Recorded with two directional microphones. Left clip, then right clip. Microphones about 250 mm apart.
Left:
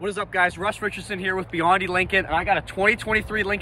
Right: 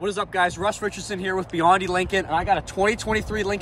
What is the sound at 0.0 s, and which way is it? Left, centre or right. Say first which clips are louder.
Speech: even; centre.